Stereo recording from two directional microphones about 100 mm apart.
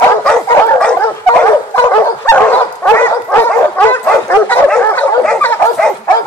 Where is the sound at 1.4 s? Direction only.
25° left (ahead or behind).